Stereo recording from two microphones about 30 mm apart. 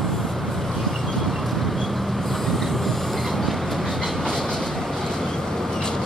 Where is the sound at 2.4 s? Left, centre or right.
Centre.